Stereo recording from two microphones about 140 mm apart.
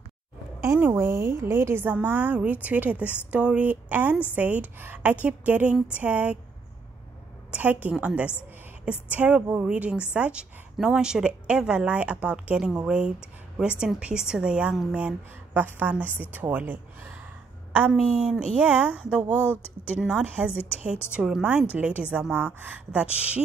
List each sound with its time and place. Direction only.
0.6 s a woman's voice: 15° right (ahead or behind)
7.5 s a woman's voice: 10° right (ahead or behind)
17.9 s a woman's voice: 5° left (ahead or behind)